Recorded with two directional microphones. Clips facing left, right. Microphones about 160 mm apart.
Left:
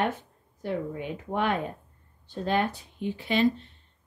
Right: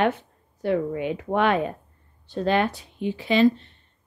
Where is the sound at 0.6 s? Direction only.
75° right (ahead or behind).